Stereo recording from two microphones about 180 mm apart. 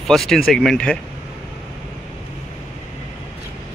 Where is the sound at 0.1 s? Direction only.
Centre (ahead or behind).